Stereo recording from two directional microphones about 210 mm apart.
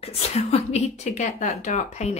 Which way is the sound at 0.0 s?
30° left (ahead or behind).